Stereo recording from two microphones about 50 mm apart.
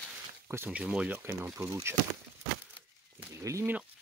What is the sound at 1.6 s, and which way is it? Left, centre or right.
Speech, right.